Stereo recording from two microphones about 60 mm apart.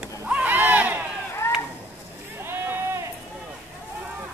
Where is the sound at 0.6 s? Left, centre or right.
Right.